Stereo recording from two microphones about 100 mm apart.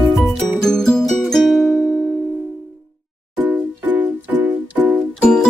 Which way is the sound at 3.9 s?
15° right (ahead or behind).